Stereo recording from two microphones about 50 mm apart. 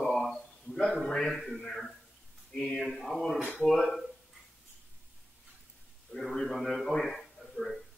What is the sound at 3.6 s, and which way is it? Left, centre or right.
Speech, centre.